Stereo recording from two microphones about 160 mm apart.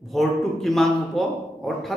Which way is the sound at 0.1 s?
Centre (ahead or behind).